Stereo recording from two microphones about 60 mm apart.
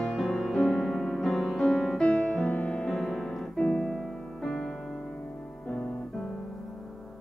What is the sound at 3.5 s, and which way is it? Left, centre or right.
Music, centre.